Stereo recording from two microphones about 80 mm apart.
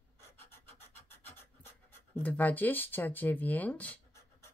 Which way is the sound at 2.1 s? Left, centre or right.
Left.